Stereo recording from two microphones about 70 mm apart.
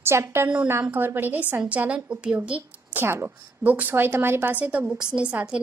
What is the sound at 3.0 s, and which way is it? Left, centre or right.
A woman's voice, right.